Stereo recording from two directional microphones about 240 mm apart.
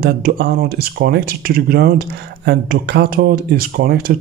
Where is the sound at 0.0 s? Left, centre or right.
Right.